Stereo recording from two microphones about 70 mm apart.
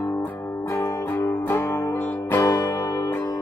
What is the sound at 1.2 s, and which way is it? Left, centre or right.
Music, left.